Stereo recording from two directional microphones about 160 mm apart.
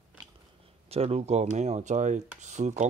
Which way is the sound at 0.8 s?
40° right (ahead or behind).